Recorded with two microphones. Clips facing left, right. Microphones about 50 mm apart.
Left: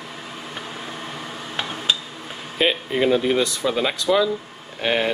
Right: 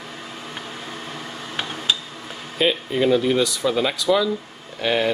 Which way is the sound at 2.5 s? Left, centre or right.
Left.